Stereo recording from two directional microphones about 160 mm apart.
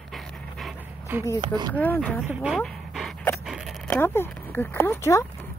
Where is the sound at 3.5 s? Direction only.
Centre (ahead or behind).